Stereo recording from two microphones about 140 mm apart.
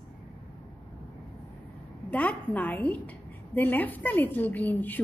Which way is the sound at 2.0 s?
10° left (ahead or behind).